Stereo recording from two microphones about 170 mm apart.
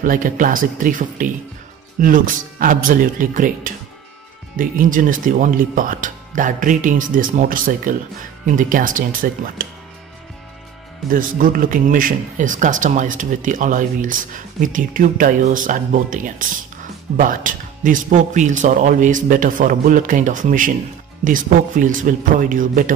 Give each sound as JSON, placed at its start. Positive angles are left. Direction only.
{"t": 0.0, "sound": "speech", "side_deg": -50}
{"t": 11.1, "sound": "speech", "side_deg": -55}